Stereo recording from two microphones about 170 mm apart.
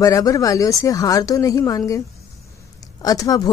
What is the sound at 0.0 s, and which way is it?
Speech, 20° left (ahead or behind).